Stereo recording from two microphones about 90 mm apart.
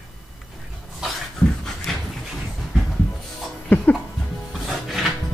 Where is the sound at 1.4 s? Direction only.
10° left (ahead or behind).